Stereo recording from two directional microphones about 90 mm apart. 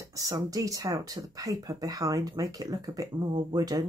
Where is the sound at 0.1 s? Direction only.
40° right (ahead or behind).